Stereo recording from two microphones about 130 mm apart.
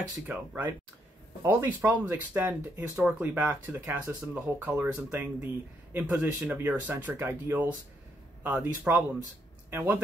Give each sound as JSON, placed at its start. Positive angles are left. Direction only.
{"t": 0.3, "sound": "speech", "side_deg": -10}